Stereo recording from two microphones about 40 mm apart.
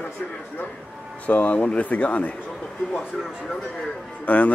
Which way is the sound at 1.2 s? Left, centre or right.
Left.